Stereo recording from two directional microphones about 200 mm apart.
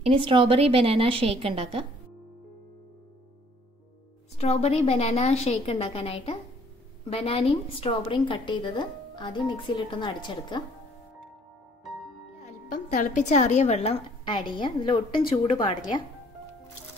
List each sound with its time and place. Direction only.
0.0 s a woman's voice: 25° right (ahead or behind)
4.4 s a woman's voice: 35° left (ahead or behind)
12.9 s a woman's voice: 40° left (ahead or behind); by 15.8 s 20° left (ahead or behind)